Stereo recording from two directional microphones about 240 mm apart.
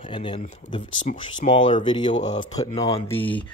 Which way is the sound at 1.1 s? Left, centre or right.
Left.